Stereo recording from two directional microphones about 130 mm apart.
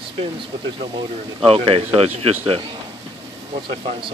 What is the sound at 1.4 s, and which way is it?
Speech, 45° right (ahead or behind).